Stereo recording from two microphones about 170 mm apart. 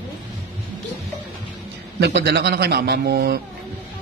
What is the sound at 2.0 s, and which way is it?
Speech, 75° right (ahead or behind).